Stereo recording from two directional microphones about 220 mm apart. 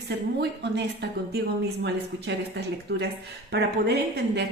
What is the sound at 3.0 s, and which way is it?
A woman's voice, 50° right (ahead or behind).